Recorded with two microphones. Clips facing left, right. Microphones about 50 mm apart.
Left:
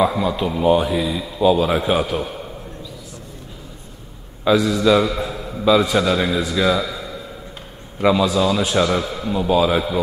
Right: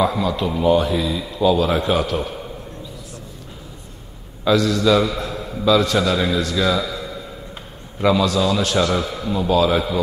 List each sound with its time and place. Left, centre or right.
0.0 s a man's voice: centre
4.5 s a man's voice: centre
5.7 s a man's voice: centre
8.0 s a man's voice: centre